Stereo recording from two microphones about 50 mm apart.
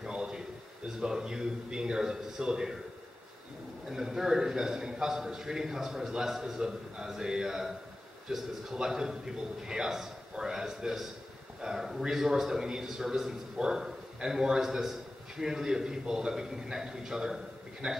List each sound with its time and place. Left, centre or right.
0.0 s a sound: centre
0.8 s a man's voice: centre
3.9 s a man's voice: centre